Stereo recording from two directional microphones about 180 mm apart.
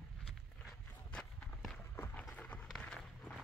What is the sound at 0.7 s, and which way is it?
Run, 5° left (ahead or behind).